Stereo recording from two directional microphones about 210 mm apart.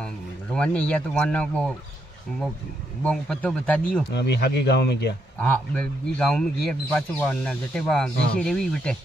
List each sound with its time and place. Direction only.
0.0 s speech: 5° left (ahead or behind)
3.0 s speech: 5° left (ahead or behind)
4.1 s speech: 55° left (ahead or behind)
5.4 s speech: 5° left (ahead or behind)